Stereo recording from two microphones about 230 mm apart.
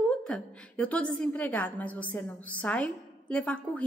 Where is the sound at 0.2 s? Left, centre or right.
Centre.